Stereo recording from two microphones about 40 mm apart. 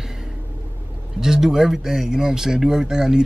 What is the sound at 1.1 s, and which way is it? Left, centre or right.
Speech, centre.